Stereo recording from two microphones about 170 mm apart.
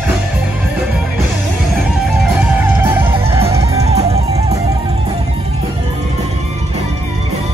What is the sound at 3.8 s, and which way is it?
Music, 40° right (ahead or behind).